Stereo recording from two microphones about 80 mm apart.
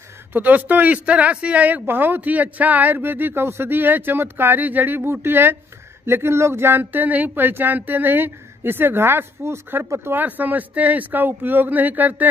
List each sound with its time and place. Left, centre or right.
0.3 s speech: right